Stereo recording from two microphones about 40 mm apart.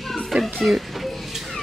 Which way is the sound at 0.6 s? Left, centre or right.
Centre.